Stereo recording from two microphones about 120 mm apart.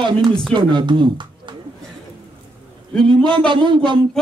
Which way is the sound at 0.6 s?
40° right (ahead or behind).